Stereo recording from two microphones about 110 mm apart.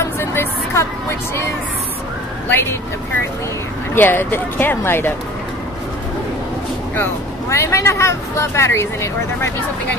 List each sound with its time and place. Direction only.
0.0 s a sound: 20° left (ahead or behind)
3.9 s speech: 20° left (ahead or behind)
7.0 s speech: 25° left (ahead or behind)